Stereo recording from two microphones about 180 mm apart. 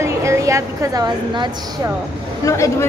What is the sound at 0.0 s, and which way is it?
A woman's voice, 15° right (ahead or behind).